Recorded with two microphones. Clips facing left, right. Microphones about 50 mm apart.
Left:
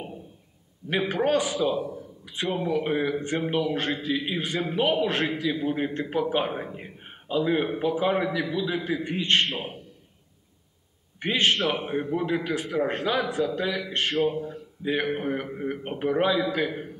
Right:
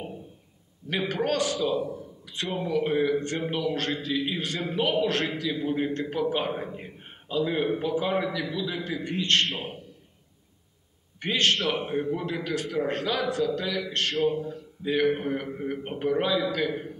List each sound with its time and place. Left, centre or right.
0.8 s a man's voice: centre
11.1 s a man's voice: centre